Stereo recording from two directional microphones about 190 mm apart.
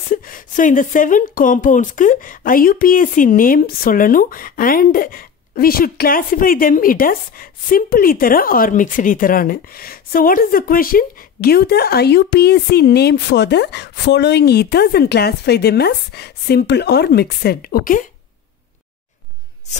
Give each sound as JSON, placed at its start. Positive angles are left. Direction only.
{"t": 0.1, "sound": "speech", "side_deg": 45}